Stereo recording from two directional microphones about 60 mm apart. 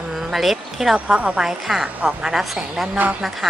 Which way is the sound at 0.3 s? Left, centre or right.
Centre.